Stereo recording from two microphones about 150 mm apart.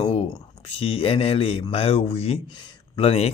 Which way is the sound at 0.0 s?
45° left (ahead or behind).